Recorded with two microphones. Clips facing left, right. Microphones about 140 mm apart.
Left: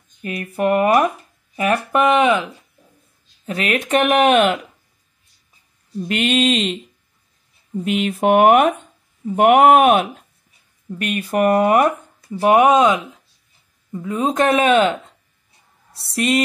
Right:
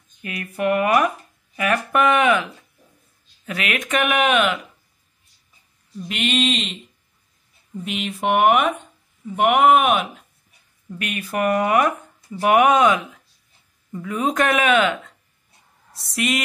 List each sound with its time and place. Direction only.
0.2 s speech: 35° left (ahead or behind)
3.4 s speech: 30° left (ahead or behind)
5.9 s speech: 50° left (ahead or behind)
11.0 s speech: 35° left (ahead or behind)
12.3 s speech: 25° left (ahead or behind)
14.0 s speech: 25° left (ahead or behind)